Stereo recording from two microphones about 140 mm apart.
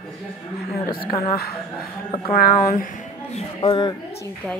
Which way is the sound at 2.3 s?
90° left.